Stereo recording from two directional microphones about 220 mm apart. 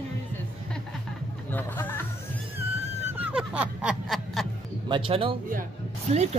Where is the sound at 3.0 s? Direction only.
5° right (ahead or behind).